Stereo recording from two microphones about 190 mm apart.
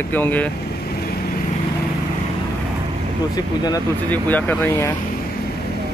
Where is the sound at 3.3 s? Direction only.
20° left (ahead or behind).